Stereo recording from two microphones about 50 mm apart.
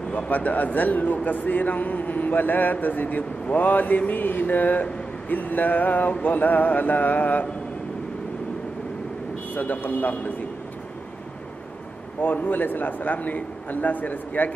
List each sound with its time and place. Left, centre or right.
0.3 s speech: left
9.5 s speech: left
12.2 s speech: left